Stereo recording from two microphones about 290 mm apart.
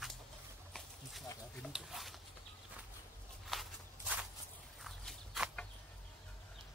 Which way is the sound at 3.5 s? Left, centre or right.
Centre.